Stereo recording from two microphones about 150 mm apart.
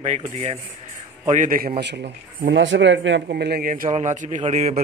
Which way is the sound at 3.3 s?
90° right.